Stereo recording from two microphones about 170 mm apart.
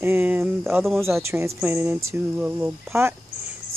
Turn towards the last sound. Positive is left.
turn(degrees=-15)  # may be behind; listen again after turning